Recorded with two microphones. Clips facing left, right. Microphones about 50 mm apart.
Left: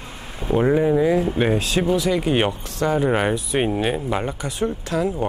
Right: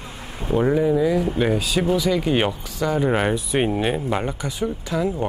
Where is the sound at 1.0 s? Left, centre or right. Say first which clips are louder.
Left 2 dB; left.